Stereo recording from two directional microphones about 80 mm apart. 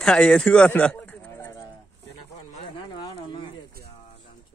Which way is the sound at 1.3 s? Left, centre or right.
Left.